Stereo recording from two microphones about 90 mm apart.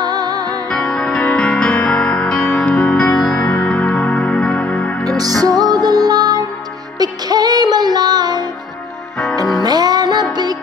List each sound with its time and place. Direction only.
0.0 s music: 45° right (ahead or behind)
0.7 s music: 10° left (ahead or behind)
5.0 s music: 45° right (ahead or behind)
9.6 s music: 50° right (ahead or behind)